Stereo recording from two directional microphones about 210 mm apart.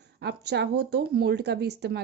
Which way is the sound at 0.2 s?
50° right (ahead or behind).